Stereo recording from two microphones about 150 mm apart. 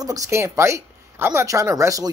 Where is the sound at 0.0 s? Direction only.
25° right (ahead or behind).